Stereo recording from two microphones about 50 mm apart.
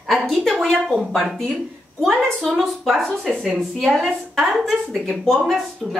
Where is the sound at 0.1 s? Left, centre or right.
Centre.